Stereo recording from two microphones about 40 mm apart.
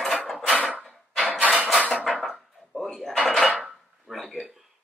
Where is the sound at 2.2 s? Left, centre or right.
Centre.